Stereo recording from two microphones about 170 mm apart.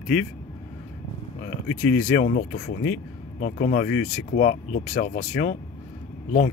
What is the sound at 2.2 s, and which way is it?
Speech, 60° left (ahead or behind).